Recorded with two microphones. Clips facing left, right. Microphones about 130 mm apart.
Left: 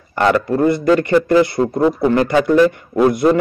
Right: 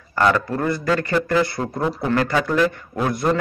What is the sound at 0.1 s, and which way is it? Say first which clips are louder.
A man's voice: left 4 dB; 25° left (ahead or behind).